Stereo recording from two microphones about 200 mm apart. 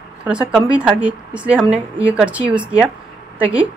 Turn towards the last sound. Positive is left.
turn(degrees=-5)  # may be behind; listen again after turning